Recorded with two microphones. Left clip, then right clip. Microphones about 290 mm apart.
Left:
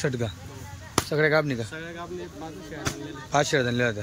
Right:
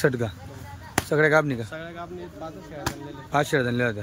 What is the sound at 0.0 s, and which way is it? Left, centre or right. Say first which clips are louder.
Speech: right 5 dB; centre.